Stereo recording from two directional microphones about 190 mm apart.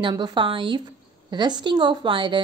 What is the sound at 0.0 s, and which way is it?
A woman's voice, 25° right (ahead or behind).